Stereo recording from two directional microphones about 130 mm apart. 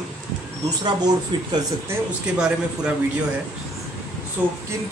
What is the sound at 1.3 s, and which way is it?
Speech, 35° right (ahead or behind).